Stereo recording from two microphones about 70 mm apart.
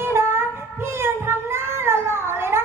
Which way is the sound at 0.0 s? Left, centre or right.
Right.